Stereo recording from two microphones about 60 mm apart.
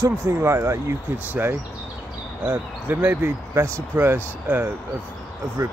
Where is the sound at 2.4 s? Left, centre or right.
Right.